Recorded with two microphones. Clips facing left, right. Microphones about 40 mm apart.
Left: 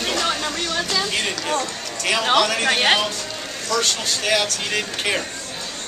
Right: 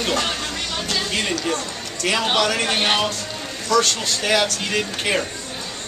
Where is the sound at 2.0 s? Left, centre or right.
Centre.